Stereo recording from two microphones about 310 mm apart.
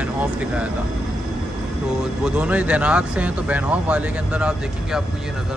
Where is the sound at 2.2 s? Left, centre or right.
Centre.